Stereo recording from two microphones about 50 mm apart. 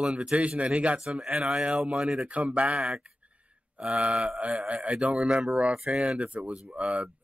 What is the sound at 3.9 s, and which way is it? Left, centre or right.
Speech, right.